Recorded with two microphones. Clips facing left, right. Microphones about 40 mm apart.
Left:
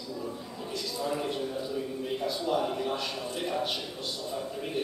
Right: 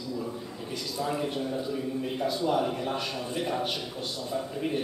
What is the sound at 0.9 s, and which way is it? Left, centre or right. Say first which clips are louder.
A man's voice: right 2 dB; centre.